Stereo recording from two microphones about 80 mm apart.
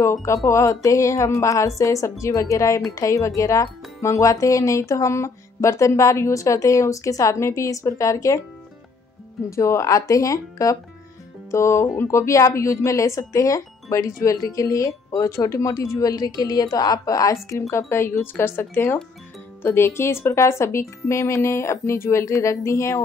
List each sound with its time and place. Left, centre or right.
0.0 s speech: left
9.5 s speech: left